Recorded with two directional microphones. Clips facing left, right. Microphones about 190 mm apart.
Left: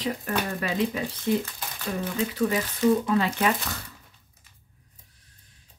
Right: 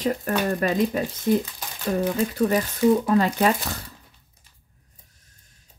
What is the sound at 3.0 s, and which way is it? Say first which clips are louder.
Speech: right 4 dB; 40° right (ahead or behind).